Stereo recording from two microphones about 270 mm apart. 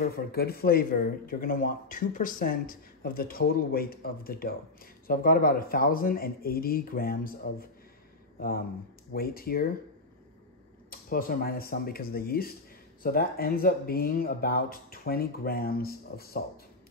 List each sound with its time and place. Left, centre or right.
0.0 s speech: left
10.9 s speech: left